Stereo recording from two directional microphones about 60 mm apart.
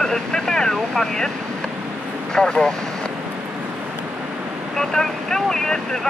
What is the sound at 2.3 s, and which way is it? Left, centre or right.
Speech, centre.